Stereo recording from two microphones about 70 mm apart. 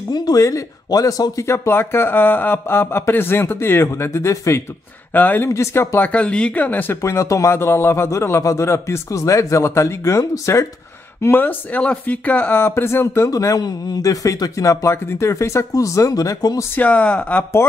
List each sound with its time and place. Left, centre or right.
0.8 s a man's voice: left
1.5 s speech: left
5.1 s speech: left
5.5 s a man's voice: left
5.9 s speech: centre
7.0 s a man's voice: left
7.5 s a man's voice: left
11.2 s speech: left
13.3 s a man's voice: left
16.7 s speech: left